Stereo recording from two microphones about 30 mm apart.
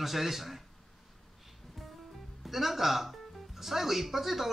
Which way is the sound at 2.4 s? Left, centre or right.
Centre.